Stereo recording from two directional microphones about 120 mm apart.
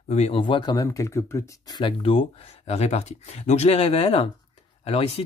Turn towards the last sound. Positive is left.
turn(degrees=55)  # may be behind; listen again after turning